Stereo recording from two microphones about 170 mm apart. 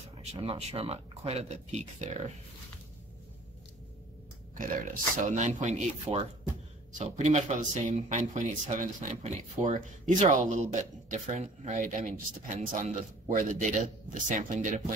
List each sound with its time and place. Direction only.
0.2 s speech: 35° right (ahead or behind)
4.6 s speech: 50° right (ahead or behind)